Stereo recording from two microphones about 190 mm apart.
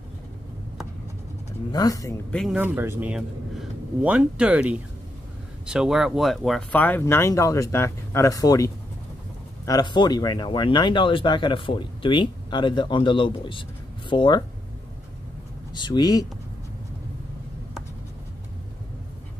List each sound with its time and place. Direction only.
1.7 s speech: 20° left (ahead or behind)
2.3 s speech: centre (ahead or behind)
2.6 s speech: 10° right (ahead or behind); by 14.4 s 25° left (ahead or behind)
15.7 s speech: 25° left (ahead or behind)